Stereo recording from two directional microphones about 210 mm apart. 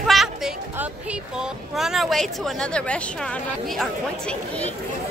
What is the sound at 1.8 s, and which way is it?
Speech, centre (ahead or behind).